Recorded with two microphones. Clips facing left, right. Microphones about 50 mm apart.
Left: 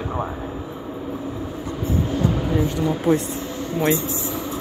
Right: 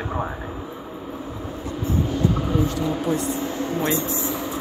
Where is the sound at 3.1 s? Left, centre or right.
Left.